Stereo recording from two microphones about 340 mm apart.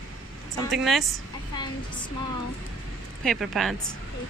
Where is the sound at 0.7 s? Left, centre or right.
Centre.